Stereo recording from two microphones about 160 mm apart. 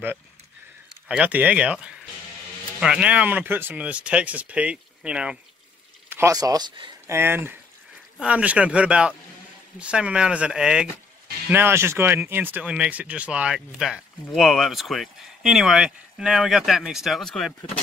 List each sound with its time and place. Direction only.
1.0 s speech: 5° right (ahead or behind)
6.0 s speech: 15° right (ahead or behind)
7.1 s speech: 15° right (ahead or behind); by 17.6 s 5° left (ahead or behind)